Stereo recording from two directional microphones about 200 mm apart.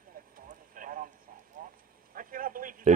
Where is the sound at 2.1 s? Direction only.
45° right (ahead or behind).